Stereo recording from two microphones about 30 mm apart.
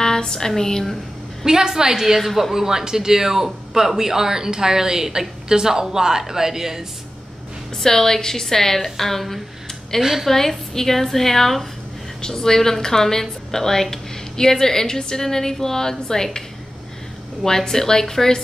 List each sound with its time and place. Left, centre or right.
0.0 s a sound: left
1.4 s a woman's voice: right
7.8 s a woman's voice: centre
17.5 s a woman's voice: centre